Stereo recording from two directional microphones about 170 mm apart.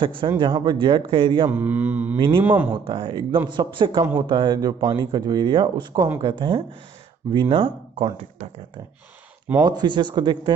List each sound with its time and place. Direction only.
0.4 s speech: 25° right (ahead or behind)
1.5 s mantra: 10° right (ahead or behind)
2.1 s speech: 30° right (ahead or behind)
2.4 s mantra: 10° right (ahead or behind)
2.7 s speech: 30° right (ahead or behind)